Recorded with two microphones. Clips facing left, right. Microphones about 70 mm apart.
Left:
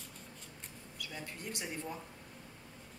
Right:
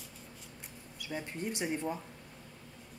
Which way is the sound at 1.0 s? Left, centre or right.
Right.